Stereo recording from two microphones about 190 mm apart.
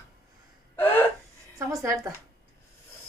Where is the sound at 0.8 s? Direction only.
10° left (ahead or behind).